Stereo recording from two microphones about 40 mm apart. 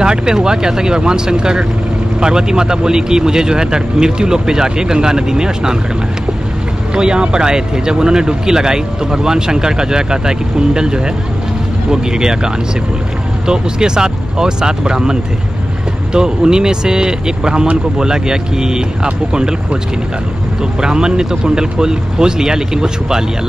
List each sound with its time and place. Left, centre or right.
0.0 s speech: centre
6.9 s speech: right
13.5 s speech: centre
20.8 s speech: centre